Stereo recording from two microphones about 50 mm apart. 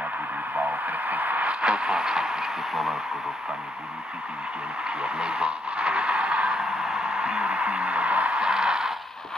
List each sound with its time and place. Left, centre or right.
0.6 s radio: right
1.5 s a sound: centre
4.8 s speech: centre
6.5 s music: centre; by 8.4 s right
8.4 s speech: centre